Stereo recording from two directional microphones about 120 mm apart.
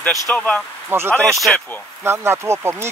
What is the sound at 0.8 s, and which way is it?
Speech, 20° right (ahead or behind).